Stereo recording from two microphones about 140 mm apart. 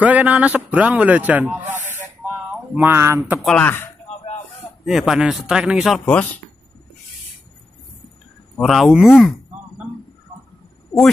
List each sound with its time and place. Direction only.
0.0 s a man's voice: 10° right (ahead or behind)
3.2 s speech: centre (ahead or behind)
3.6 s speech: 15° left (ahead or behind)
4.8 s speech: centre (ahead or behind)
8.5 s speech: centre (ahead or behind)